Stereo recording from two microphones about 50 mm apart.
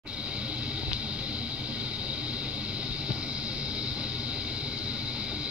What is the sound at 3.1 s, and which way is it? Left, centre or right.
Vehicle, right.